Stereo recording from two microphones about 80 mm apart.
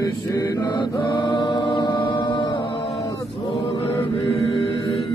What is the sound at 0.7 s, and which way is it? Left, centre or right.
Music, left.